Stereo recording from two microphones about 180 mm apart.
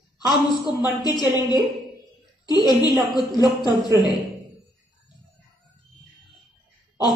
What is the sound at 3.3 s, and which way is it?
Speech, 25° left (ahead or behind).